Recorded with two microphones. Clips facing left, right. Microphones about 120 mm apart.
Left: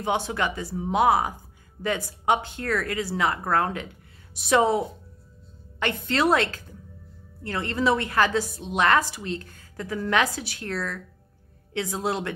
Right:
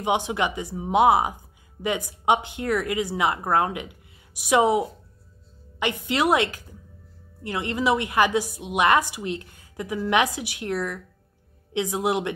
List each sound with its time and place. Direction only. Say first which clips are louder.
0.0 s speech: right 2 dB; 15° right (ahead or behind)